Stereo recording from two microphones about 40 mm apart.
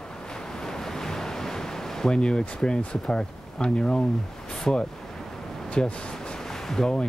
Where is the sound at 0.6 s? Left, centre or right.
Centre.